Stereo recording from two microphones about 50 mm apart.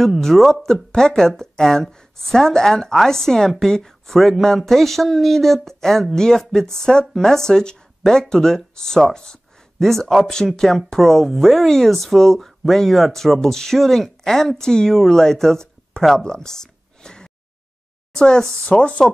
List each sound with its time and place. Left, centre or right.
0.0 s speech: centre
9.8 s speech: centre
17.0 s a sound: centre
18.1 s speech: centre